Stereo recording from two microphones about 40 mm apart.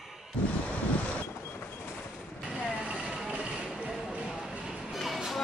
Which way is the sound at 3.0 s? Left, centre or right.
Centre.